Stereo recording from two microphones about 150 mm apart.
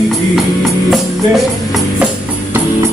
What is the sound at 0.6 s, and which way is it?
Music, centre (ahead or behind).